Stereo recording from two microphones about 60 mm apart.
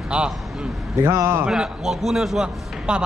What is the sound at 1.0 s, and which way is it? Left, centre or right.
Speech, right.